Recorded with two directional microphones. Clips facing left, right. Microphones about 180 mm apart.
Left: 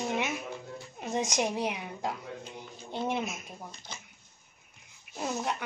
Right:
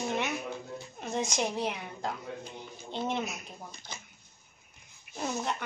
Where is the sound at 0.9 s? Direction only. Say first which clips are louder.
Left 2 dB; 10° left (ahead or behind).